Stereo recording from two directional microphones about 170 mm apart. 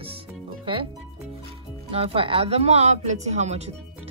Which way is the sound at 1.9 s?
35° right (ahead or behind).